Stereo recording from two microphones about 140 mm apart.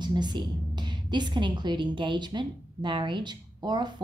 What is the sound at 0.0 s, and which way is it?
A woman's voice, 30° right (ahead or behind).